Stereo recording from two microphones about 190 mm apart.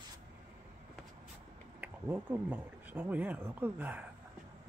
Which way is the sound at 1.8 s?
10° right (ahead or behind).